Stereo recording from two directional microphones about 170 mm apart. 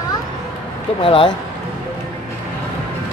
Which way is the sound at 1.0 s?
30° left (ahead or behind).